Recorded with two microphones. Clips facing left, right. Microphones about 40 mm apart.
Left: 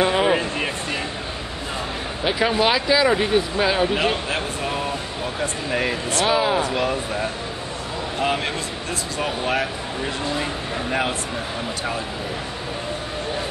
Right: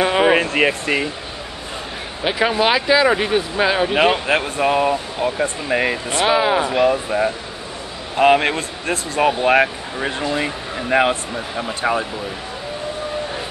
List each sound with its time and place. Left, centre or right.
0.0 s a sound: right
0.3 s speech: right
2.2 s speech: centre
3.9 s speech: right
5.7 s speech: centre
8.2 s speech: right